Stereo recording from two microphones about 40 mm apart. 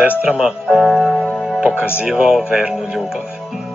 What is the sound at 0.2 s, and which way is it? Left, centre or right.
Speech, right.